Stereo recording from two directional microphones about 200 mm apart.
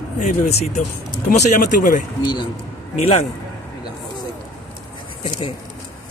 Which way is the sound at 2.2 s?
20° left (ahead or behind).